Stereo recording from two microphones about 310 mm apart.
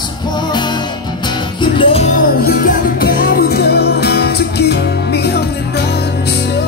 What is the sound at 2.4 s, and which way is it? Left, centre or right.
Music, left.